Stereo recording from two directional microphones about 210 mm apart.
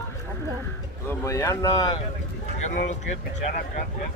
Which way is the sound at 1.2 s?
15° left (ahead or behind).